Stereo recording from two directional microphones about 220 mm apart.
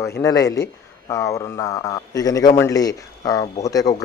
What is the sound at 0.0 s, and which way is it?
Speech, 15° left (ahead or behind).